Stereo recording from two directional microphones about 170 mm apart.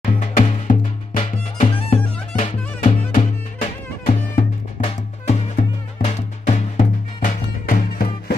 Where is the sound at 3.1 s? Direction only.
40° left (ahead or behind).